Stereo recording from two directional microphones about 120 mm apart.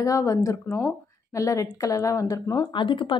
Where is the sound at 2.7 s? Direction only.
45° left (ahead or behind).